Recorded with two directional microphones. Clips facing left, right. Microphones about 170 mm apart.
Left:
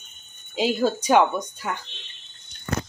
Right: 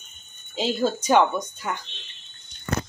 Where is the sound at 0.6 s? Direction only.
10° left (ahead or behind).